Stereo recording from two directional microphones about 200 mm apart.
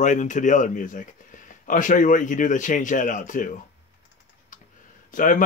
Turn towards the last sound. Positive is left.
turn(degrees=40)  # may be behind; listen again after turning